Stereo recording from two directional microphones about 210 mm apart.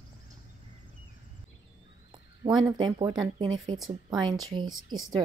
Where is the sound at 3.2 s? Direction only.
20° right (ahead or behind).